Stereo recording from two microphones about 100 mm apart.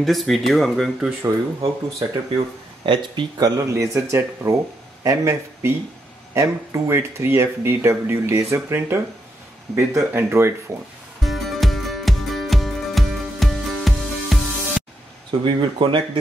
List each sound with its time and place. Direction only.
0.0 s speech: centre (ahead or behind)
1.2 s speech: 30° right (ahead or behind)
2.3 s speech: 55° right (ahead or behind); by 3.6 s 40° right (ahead or behind)
3.7 s speech: 30° right (ahead or behind)
5.6 s speech: 25° right (ahead or behind)
11.2 s music: centre (ahead or behind)
15.4 s speech: 55° right (ahead or behind)